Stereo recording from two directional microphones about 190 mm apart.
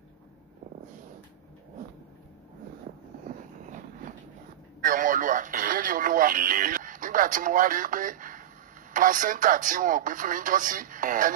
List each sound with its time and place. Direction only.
3.3 s vehicle: 40° right (ahead or behind)
4.8 s speech: 45° right (ahead or behind)